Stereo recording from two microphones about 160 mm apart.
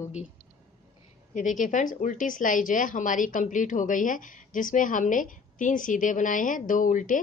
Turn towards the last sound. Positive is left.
turn(degrees=55)  # may be behind; listen again after turning